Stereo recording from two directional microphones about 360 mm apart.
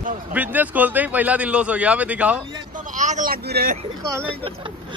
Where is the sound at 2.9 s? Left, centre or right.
Centre.